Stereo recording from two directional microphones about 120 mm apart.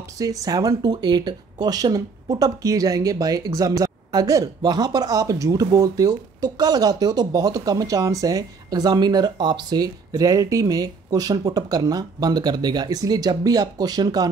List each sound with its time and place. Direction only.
0.2 s speech: 30° right (ahead or behind)